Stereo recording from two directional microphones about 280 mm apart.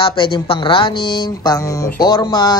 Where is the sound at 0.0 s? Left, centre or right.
Centre.